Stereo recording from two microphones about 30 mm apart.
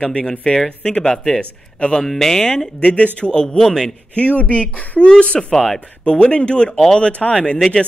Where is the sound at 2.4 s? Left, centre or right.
Left.